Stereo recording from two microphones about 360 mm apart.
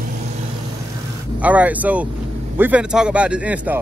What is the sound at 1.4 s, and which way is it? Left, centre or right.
Speech, centre.